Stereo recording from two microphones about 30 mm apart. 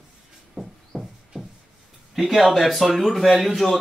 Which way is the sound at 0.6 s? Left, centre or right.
Right.